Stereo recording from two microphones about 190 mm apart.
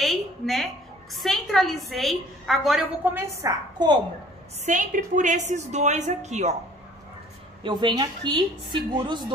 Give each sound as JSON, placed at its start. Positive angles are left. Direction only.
{"t": 0.0, "sound": "a sound", "side_deg": 0}
{"t": 1.1, "sound": "a woman's voice", "side_deg": 0}
{"t": 4.6, "sound": "a woman's voice", "side_deg": -40}
{"t": 7.6, "sound": "a woman's voice", "side_deg": -25}